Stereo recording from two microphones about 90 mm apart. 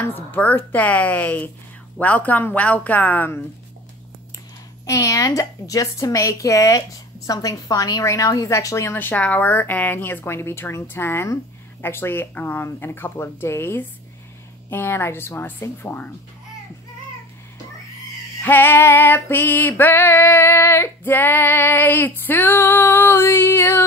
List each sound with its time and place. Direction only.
0.0 s speech: 20° left (ahead or behind)
4.8 s a woman's voice: 35° left (ahead or behind)
8.9 s female singing: 20° left (ahead or behind)
18.4 s female singing: 20° left (ahead or behind)